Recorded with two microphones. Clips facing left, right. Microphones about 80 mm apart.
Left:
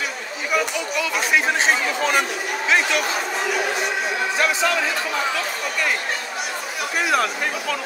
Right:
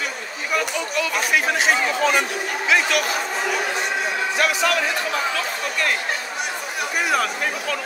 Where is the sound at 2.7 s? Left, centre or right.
Left.